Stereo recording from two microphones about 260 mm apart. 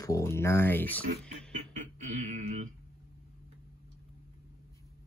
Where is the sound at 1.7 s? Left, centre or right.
Right.